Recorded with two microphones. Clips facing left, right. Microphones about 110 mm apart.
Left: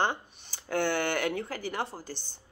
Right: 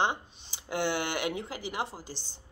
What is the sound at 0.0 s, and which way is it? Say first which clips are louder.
Speech: even; 15° right (ahead or behind).